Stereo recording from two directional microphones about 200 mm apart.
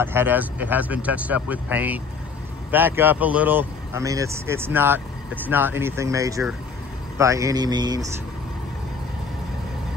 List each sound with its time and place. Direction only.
0.0 s a man's voice: 10° right (ahead or behind)